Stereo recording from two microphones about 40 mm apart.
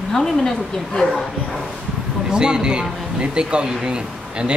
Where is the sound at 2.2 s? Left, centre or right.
Right.